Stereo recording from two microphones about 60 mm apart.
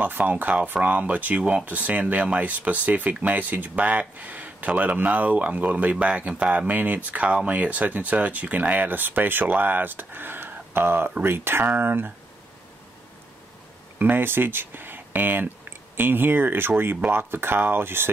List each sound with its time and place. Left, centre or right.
0.0 s speech: right
13.9 s speech: right